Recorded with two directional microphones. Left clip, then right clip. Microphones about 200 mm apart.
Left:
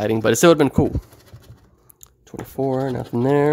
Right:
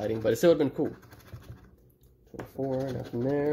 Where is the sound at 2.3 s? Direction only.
55° left (ahead or behind).